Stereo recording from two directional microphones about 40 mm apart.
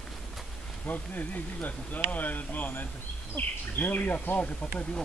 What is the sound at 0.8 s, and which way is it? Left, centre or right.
Speech, left.